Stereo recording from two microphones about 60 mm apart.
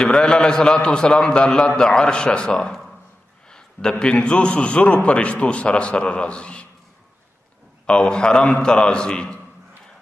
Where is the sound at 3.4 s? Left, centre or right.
Centre.